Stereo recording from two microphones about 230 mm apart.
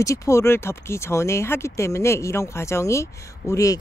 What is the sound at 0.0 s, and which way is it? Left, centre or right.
Speech, centre.